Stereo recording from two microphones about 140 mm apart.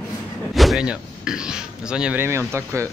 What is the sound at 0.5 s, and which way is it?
A man's voice, centre (ahead or behind).